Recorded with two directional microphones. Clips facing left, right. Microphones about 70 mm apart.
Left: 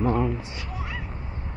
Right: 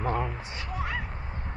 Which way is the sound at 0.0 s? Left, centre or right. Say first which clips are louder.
Left 5 dB; right.